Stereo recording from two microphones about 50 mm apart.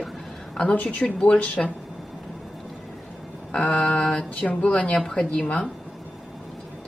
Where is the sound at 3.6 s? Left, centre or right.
Left.